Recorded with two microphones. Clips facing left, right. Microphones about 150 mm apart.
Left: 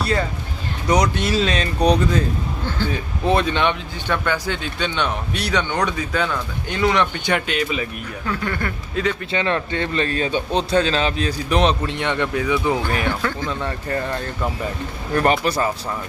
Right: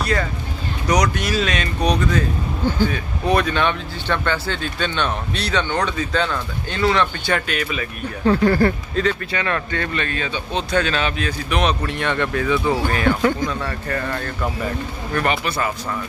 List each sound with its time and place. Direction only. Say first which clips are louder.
0.8 s speech: left 1 dB; 25° left (ahead or behind)
3.3 s speech: even; 25° left (ahead or behind)
4.1 s speech: even; 10° left (ahead or behind)
8.3 s speech: right 10 dB; 35° right (ahead or behind)
9.0 s speech: right 1 dB; 10° left (ahead or behind)
9.3 s a man's voice: left 2 dB; 25° left (ahead or behind)
11.8 s speech: even; 20° left (ahead or behind)
13.2 s speech: right 6 dB; 20° right (ahead or behind)
13.5 s speech: even; 20° left (ahead or behind)
15.4 s a man's voice: left 3 dB; 35° left (ahead or behind)